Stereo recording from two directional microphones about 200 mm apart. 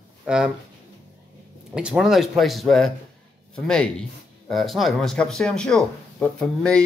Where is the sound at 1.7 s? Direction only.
5° right (ahead or behind).